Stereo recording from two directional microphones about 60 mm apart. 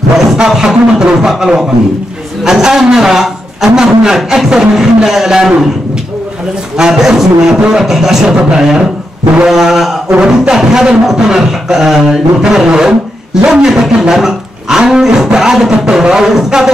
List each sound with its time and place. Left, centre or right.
0.4 s speech: centre
6.8 s speech: centre
10.0 s speech: centre